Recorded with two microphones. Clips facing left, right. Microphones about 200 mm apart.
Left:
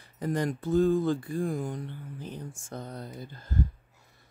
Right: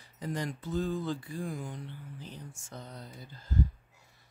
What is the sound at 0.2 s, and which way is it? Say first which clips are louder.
Speech: left 7 dB; 50° left (ahead or behind).